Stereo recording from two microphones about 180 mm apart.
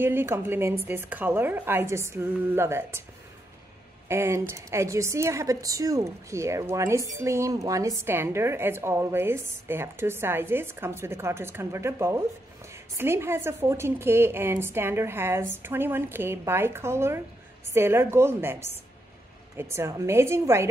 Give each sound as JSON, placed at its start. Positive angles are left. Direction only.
{"t": 0.0, "sound": "a woman's voice", "side_deg": -10}
{"t": 4.1, "sound": "a woman's voice", "side_deg": -15}